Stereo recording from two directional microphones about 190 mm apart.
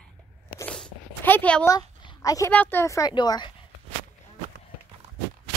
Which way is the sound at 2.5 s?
10° left (ahead or behind).